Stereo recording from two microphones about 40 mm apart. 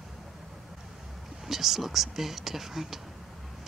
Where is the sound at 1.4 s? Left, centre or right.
Centre.